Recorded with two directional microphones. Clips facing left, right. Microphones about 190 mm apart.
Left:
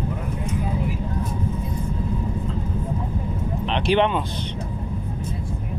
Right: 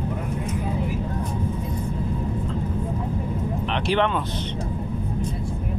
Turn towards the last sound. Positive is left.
turn(degrees=15)  # may be behind; listen again after turning